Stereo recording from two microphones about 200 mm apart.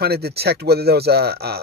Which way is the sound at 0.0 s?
55° right (ahead or behind).